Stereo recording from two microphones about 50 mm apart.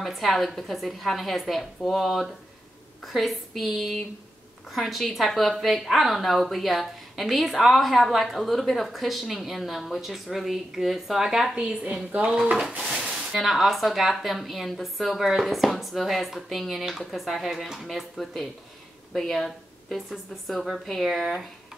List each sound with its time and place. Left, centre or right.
0.0 s speech: centre
11.5 s a woman's voice: right
13.1 s speech: centre
18.1 s speech: centre